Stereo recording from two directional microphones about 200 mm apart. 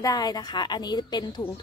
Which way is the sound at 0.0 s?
20° left (ahead or behind).